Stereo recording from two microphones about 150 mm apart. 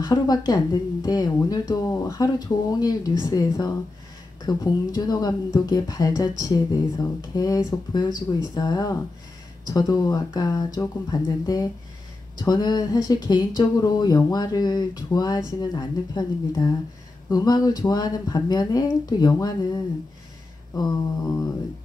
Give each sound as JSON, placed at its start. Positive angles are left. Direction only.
{"t": 0.0, "sound": "speech", "side_deg": 25}